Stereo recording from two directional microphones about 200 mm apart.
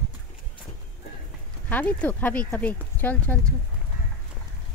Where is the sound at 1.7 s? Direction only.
5° left (ahead or behind).